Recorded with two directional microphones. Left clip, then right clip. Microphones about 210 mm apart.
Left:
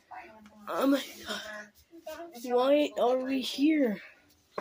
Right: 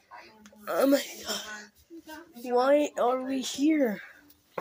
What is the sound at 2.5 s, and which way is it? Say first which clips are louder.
Speech: right 2 dB; centre (ahead or behind).